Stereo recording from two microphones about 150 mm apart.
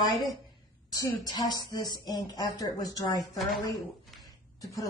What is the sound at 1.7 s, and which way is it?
A woman's voice, 25° left (ahead or behind).